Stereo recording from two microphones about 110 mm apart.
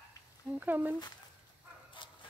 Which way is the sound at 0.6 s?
15° right (ahead or behind).